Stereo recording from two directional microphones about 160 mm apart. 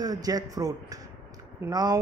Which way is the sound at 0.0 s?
25° right (ahead or behind).